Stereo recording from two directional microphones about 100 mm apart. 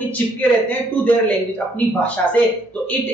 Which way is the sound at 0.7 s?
15° left (ahead or behind).